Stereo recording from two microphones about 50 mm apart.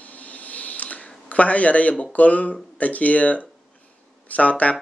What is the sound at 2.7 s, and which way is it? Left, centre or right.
Speech, left.